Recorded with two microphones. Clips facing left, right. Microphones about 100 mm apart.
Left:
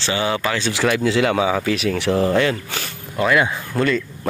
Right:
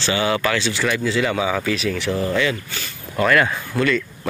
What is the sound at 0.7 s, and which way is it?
Speech, 65° left (ahead or behind).